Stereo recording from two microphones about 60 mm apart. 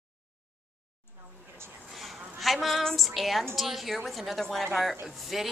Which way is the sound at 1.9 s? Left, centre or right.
Centre.